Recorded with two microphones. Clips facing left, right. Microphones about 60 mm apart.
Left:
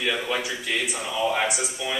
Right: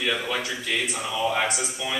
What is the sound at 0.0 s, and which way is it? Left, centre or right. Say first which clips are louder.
A man's voice: left 1 dB; centre.